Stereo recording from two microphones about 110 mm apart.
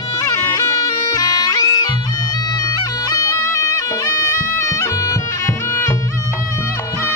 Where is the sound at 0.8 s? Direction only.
35° left (ahead or behind).